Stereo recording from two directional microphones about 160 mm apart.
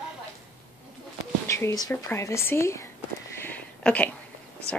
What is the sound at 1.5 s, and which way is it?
Speech, 20° left (ahead or behind).